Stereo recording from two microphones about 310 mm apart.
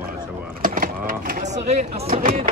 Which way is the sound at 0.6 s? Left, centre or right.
Right.